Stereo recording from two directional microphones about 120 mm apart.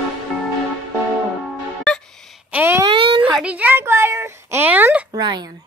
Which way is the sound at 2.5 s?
15° right (ahead or behind).